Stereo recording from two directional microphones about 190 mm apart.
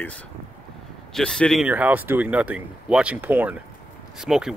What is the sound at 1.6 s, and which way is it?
Speech, 10° right (ahead or behind).